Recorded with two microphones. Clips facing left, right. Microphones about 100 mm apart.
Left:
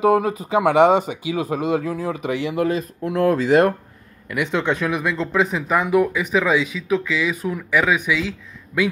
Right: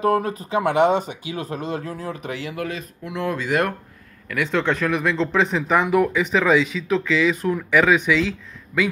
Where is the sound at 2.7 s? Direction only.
40° left (ahead or behind).